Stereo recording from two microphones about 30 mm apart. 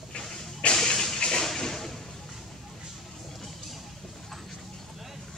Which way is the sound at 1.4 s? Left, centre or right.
Centre.